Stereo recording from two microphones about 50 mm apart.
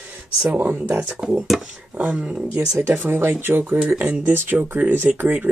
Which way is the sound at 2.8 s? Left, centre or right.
Right.